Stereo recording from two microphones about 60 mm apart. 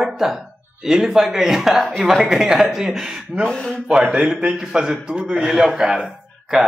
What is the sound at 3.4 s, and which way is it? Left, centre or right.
Speech, centre.